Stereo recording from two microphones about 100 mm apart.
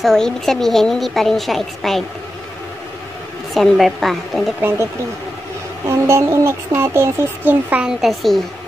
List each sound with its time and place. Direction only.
0.0 s a woman's voice: 5° left (ahead or behind)
3.5 s a woman's voice: centre (ahead or behind)
4.6 s speech: 25° right (ahead or behind)
5.9 s speech: 25° right (ahead or behind)
8.0 s a woman's voice: centre (ahead or behind)